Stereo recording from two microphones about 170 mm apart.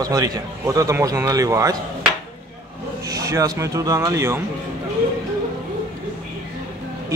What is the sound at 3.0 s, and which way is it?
A man's voice, 20° right (ahead or behind).